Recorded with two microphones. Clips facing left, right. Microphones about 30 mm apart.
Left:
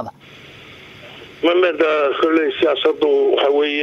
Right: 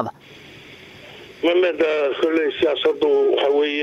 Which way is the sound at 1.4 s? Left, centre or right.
Centre.